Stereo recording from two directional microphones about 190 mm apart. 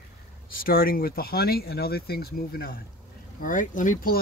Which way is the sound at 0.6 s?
50° left (ahead or behind).